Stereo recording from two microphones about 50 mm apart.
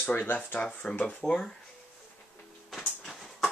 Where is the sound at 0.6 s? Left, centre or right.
Left.